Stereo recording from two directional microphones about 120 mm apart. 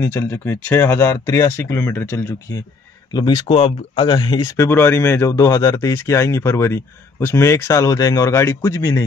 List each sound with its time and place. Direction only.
0.0 s speech: 20° left (ahead or behind)
3.1 s speech: 35° left (ahead or behind)
4.6 s speech: 20° left (ahead or behind)